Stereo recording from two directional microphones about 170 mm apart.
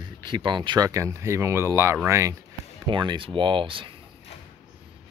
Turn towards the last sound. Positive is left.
turn(degrees=-30)  # may be behind; listen again after turning